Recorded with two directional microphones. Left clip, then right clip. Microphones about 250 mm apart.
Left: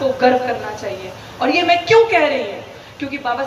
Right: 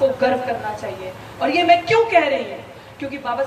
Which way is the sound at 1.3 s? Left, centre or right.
Centre.